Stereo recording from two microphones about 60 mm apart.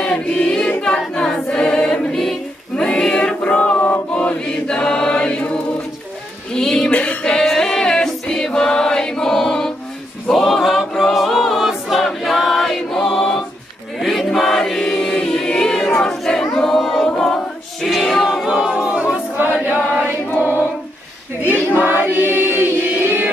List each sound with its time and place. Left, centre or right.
0.0 s choir: centre
3.7 s mantra: left
4.1 s choir: left
6.5 s music: centre
6.9 s music: left
7.3 s choir: centre
17.8 s music: centre
18.5 s a sound: centre
20.3 s female singing: right
21.7 s choir: right